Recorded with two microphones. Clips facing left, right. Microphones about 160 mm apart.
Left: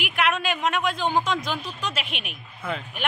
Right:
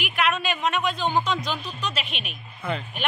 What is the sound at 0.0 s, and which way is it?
A man's voice, 15° left (ahead or behind).